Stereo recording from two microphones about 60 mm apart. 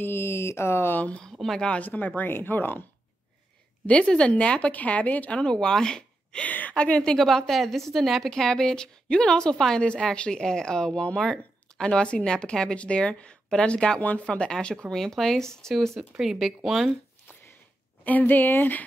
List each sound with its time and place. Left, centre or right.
0.0 s speech: left
0.9 s speech: left
1.2 s speech: centre
1.6 s speech: centre
1.9 s speech: left
3.8 s speech: centre
5.4 s a woman's voice: centre
16.2 s speech: centre
18.0 s speech: left